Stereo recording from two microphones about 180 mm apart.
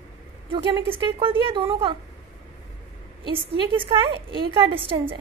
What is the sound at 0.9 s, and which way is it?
A woman's voice, 30° right (ahead or behind).